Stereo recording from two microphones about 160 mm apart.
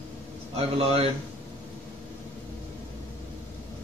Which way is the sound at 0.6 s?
40° right (ahead or behind).